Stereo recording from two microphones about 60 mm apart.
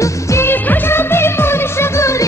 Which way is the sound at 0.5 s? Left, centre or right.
Left.